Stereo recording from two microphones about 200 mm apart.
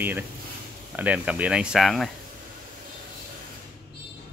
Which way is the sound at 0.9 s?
5° right (ahead or behind).